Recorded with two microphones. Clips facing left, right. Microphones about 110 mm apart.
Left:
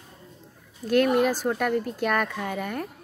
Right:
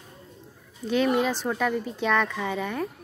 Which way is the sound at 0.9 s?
5° left (ahead or behind).